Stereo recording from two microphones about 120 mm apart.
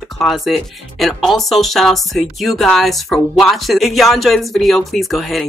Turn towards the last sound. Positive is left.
turn(degrees=0)  # may be behind; listen again after turning